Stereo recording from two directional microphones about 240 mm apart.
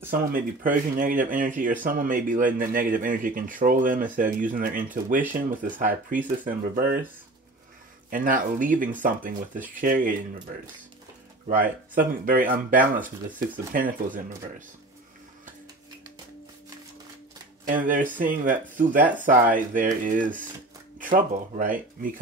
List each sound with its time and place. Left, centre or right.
0.1 s speech: right
8.1 s speech: right
11.4 s speech: right
17.6 s speech: right